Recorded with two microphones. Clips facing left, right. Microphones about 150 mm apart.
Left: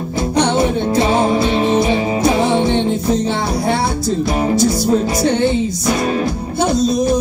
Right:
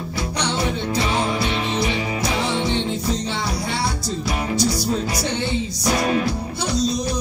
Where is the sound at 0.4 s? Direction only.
50° left (ahead or behind).